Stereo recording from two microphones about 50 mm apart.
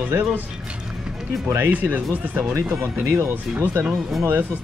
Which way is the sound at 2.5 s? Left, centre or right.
Right.